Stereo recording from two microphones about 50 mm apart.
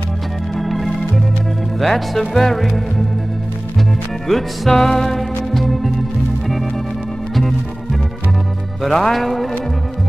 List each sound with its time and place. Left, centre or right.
0.6 s organ: centre
1.8 s music: centre
4.3 s music: centre
8.8 s music: centre